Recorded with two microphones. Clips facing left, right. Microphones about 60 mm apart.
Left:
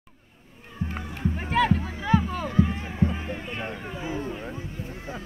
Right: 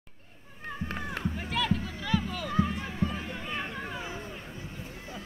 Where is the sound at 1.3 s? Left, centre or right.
Left.